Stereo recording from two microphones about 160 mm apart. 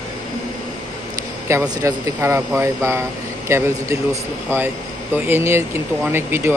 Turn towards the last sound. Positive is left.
turn(degrees=-15)  # may be behind; listen again after turning